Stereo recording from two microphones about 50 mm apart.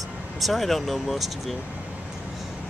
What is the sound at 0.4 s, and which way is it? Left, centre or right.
Speech, centre.